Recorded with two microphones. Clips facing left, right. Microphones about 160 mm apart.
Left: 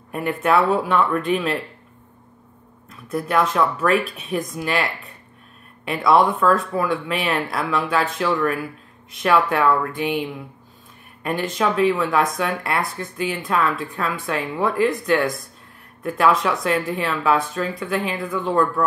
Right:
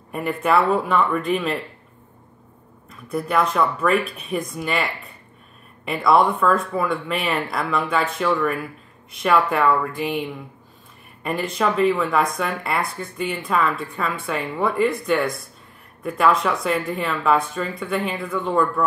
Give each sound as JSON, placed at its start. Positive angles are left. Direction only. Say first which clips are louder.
{"t": 0.1, "sound": "speech", "louder": "left 1 dB", "side_deg": 0}
{"t": 2.9, "sound": "speech", "louder": "left 1 dB", "side_deg": 0}